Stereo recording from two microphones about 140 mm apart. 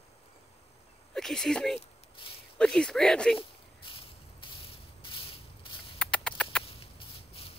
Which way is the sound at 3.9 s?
40° left (ahead or behind).